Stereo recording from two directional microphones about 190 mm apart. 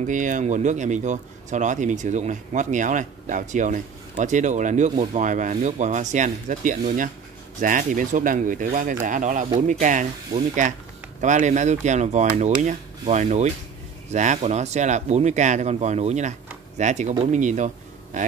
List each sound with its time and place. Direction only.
0.0 s speech: 40° right (ahead or behind)